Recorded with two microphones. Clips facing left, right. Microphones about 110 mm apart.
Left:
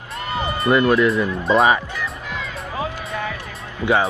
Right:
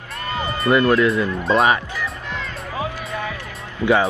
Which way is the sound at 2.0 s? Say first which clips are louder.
Even; centre (ahead or behind).